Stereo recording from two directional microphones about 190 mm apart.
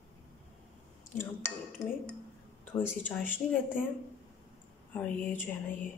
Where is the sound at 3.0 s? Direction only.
10° left (ahead or behind).